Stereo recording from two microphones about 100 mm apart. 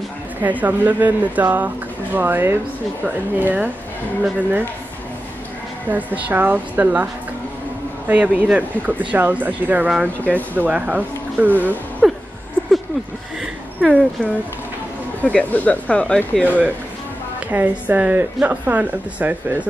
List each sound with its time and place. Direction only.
0.4 s a woman's voice: 15° right (ahead or behind)
5.9 s a woman's voice: 15° right (ahead or behind)
8.1 s a woman's voice: 15° right (ahead or behind)
12.0 s laughter: 5° right (ahead or behind)
13.8 s speech: 10° left (ahead or behind)
17.5 s a woman's voice: 15° right (ahead or behind)